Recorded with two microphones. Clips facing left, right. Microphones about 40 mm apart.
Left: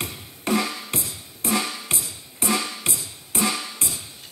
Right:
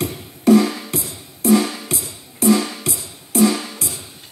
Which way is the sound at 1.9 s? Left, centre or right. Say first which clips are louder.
Right 3 dB; left.